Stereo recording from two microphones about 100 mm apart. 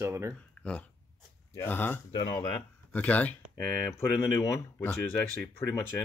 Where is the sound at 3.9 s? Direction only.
30° left (ahead or behind).